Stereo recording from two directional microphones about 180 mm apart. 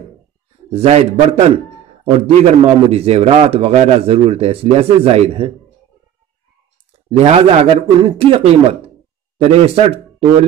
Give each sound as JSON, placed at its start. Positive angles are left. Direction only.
{"t": 0.7, "sound": "a man's voice", "side_deg": -35}
{"t": 7.1, "sound": "a man's voice", "side_deg": -35}
{"t": 9.4, "sound": "a man's voice", "side_deg": -35}